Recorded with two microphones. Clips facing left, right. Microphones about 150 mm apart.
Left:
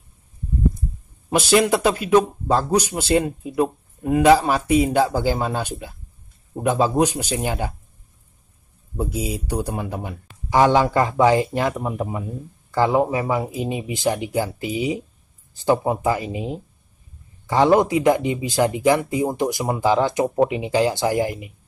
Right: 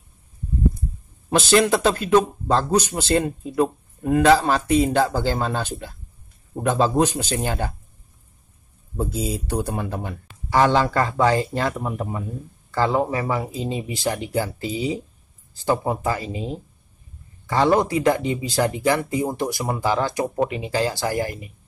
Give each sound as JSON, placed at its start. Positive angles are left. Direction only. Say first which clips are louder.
{"t": 1.3, "sound": "speech", "louder": "even", "side_deg": 10}
{"t": 8.9, "sound": "speech", "louder": "even", "side_deg": 10}